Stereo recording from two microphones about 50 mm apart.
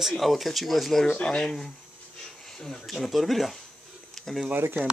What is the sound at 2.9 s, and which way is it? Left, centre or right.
Speech, centre.